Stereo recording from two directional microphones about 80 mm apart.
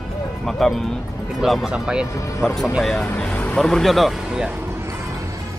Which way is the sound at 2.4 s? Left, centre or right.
Centre.